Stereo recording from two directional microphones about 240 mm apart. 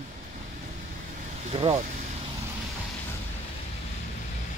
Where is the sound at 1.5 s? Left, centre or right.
Right.